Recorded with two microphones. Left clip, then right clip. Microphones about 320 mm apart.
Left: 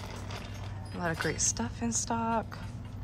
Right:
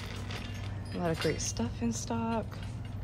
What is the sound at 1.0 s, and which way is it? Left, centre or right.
Speech, centre.